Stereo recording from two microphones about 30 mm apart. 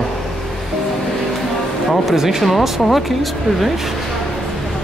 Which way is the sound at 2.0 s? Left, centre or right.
Centre.